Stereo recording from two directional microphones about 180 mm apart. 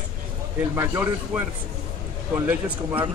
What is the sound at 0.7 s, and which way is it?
Speech, 15° right (ahead or behind).